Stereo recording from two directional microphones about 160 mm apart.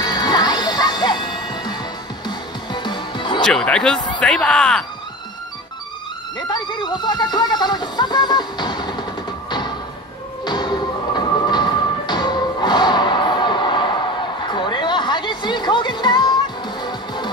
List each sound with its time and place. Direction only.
0.0 s music: 25° left (ahead or behind)
3.4 s speech: 5° left (ahead or behind)
6.5 s music: 25° left (ahead or behind)
10.4 s music: 25° left (ahead or behind)